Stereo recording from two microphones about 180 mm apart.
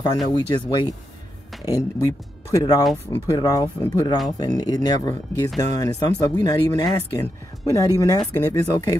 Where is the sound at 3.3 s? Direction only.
20° left (ahead or behind).